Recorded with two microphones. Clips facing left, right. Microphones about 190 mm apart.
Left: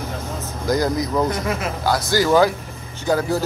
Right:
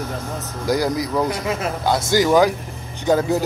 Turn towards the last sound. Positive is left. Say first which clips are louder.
# right 2 dB
turn(degrees=-20)  # may be behind; listen again after turning